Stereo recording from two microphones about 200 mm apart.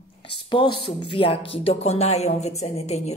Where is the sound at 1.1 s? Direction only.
30° left (ahead or behind).